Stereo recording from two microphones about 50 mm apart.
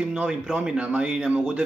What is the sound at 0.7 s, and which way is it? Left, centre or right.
Speech, right.